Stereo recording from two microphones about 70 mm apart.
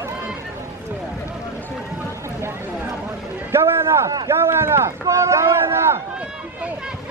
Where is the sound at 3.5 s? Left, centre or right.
Right.